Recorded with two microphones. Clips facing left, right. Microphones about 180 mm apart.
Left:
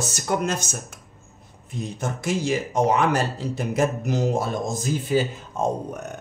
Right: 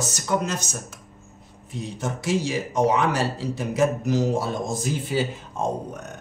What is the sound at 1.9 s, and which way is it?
Speech, 50° left (ahead or behind).